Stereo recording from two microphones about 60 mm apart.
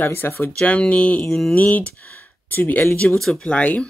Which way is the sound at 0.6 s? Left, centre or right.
Left.